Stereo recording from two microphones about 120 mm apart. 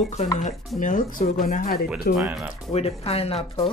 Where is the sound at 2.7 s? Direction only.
55° left (ahead or behind).